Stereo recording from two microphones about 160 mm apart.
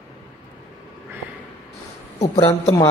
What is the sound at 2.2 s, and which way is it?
Speech, 40° left (ahead or behind).